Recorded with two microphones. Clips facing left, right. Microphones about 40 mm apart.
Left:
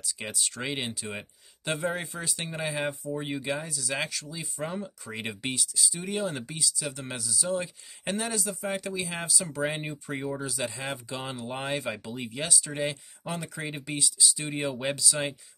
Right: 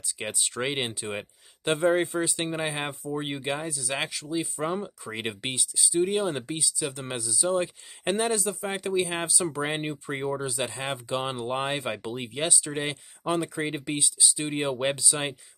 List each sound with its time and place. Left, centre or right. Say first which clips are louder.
0.0 s speech: right 2 dB; right
2.6 s speech: even; right